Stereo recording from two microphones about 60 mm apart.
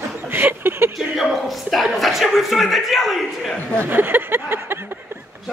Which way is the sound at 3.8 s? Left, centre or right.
Right.